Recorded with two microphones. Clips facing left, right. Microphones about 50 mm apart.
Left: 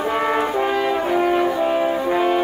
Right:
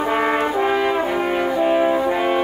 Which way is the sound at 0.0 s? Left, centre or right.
Centre.